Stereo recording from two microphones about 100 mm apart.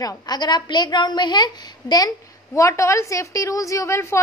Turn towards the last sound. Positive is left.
turn(degrees=30)  # may be behind; listen again after turning